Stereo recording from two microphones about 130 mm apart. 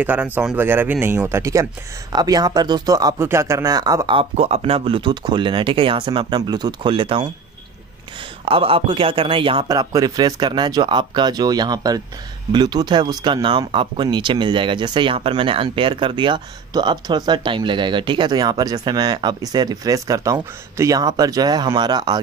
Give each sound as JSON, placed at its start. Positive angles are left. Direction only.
{"t": 0.0, "sound": "speech", "side_deg": -15}
{"t": 4.2, "sound": "speech", "side_deg": -50}
{"t": 8.5, "sound": "speech", "side_deg": -45}
{"t": 9.7, "sound": "speech", "side_deg": -30}